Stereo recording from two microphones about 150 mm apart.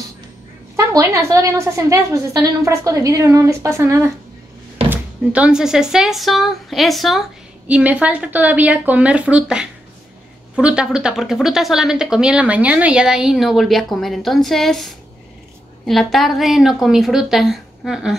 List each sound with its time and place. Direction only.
0.7 s a woman's voice: 20° right (ahead or behind); by 18.1 s 5° right (ahead or behind)